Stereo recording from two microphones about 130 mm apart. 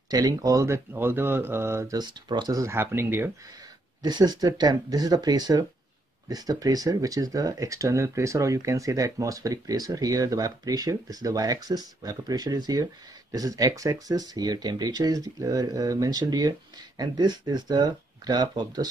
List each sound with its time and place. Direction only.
0.1 s speech: 25° right (ahead or behind)
2.0 s speech: 35° right (ahead or behind); by 3.3 s 15° right (ahead or behind)
4.0 s speech: 30° right (ahead or behind)